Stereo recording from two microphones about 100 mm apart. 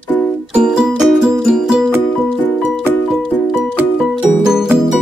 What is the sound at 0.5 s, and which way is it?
Music, 10° right (ahead or behind).